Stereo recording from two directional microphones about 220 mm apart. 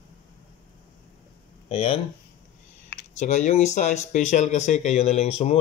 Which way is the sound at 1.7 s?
25° left (ahead or behind).